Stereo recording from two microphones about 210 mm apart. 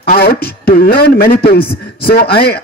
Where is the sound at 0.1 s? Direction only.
45° left (ahead or behind).